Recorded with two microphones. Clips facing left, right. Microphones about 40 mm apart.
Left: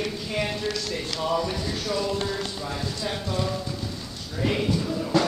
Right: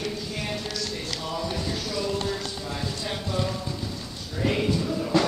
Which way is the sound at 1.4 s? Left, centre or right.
Centre.